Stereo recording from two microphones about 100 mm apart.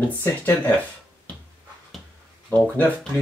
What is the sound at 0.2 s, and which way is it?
Speech, 25° left (ahead or behind).